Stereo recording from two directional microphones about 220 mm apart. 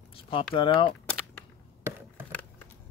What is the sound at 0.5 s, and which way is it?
Speech, 20° left (ahead or behind).